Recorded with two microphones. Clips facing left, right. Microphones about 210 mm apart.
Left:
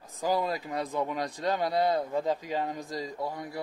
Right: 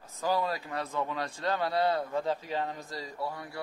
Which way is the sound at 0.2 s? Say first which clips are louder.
Left 2 dB; 15° left (ahead or behind).